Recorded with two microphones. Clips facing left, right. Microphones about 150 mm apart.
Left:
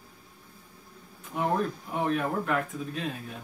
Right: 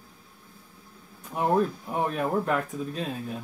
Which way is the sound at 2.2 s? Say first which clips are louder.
Right 2 dB; 35° right (ahead or behind).